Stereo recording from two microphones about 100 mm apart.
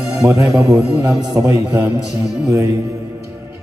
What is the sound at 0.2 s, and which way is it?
A man's voice, 35° right (ahead or behind).